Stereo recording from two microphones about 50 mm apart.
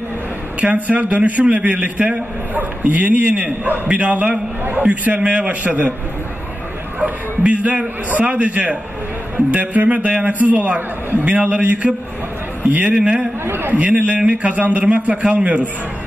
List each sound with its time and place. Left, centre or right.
0.6 s a man's voice: right
7.0 s a man's voice: right
13.5 s a man's voice: right
13.7 s a man's voice: right